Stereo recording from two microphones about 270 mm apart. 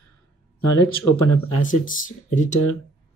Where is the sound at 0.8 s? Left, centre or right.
Left.